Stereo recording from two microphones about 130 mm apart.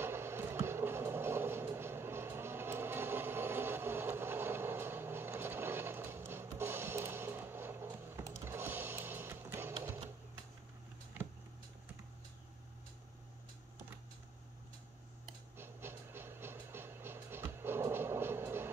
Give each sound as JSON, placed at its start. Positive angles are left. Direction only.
{"t": 0.0, "sound": "train", "side_deg": -20}
{"t": 15.5, "sound": "train", "side_deg": -15}